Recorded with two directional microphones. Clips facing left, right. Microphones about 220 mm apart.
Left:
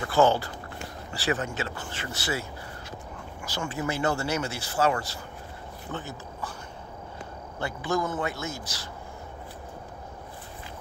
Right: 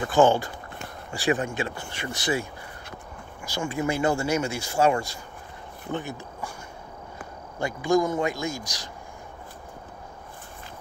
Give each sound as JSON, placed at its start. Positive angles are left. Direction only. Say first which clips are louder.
{"t": 0.0, "sound": "speech", "louder": "right 3 dB", "side_deg": -15}
{"t": 3.5, "sound": "speech", "louder": "right 4 dB", "side_deg": -10}
{"t": 7.5, "sound": "speech", "louder": "right 6 dB", "side_deg": -15}